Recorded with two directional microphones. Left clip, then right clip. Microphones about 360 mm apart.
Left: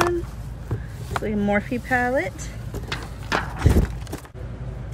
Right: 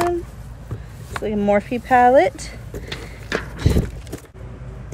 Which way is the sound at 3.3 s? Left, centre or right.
Centre.